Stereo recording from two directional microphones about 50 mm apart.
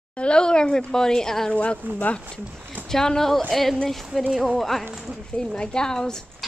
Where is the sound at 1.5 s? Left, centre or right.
Left.